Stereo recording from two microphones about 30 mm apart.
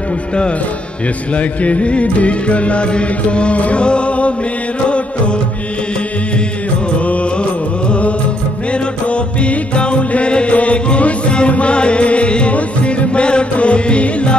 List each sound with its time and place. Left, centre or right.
1.3 s music: left
8.7 s music: left